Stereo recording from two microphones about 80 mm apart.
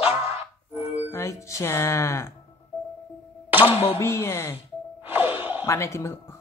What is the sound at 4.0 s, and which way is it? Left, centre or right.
Speech, left.